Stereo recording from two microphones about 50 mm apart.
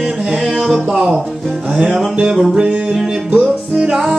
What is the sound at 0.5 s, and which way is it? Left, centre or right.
Music, centre.